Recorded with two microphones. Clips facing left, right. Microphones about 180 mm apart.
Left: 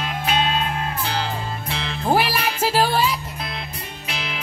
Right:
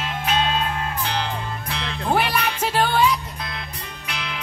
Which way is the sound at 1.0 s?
30° left (ahead or behind).